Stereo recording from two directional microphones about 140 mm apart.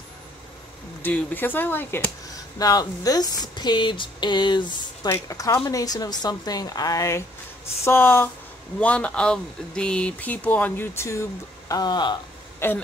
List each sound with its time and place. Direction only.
1.0 s speech: 15° left (ahead or behind)
2.6 s speech: 25° left (ahead or behind)
5.1 s a woman's voice: 20° left (ahead or behind)
11.7 s speech: 30° left (ahead or behind)
12.5 s speech: 15° left (ahead or behind)